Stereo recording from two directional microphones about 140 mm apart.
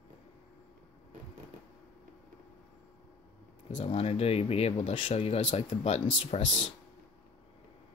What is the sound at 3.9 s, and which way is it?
Speech, 45° left (ahead or behind).